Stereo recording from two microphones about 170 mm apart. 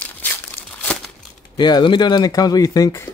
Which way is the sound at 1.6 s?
25° left (ahead or behind).